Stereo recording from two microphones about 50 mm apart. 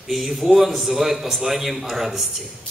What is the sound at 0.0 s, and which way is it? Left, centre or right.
A man's voice, centre.